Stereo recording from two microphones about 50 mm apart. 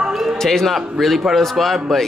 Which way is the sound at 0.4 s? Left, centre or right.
Centre.